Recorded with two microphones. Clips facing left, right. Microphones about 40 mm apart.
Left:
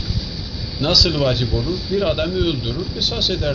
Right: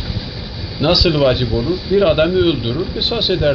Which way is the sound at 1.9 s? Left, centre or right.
Right.